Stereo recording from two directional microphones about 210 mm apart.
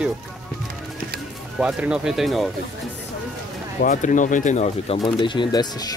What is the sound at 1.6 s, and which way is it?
Speech, 5° right (ahead or behind).